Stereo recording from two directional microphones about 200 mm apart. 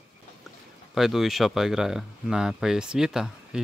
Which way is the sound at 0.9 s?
Centre (ahead or behind).